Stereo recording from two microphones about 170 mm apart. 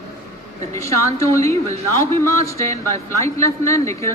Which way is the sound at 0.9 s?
15° left (ahead or behind).